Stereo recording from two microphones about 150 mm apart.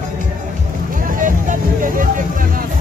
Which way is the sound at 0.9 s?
65° right (ahead or behind).